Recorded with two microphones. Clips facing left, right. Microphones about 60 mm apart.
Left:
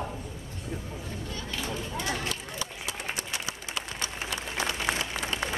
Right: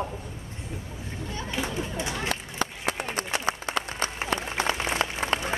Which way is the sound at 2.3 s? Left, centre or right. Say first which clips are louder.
Right 5 dB; right.